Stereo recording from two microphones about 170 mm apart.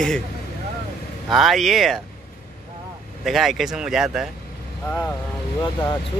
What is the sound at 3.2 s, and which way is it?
Speech, centre (ahead or behind).